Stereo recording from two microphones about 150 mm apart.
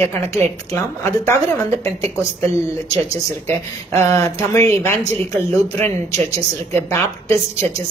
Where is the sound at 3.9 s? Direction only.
20° left (ahead or behind).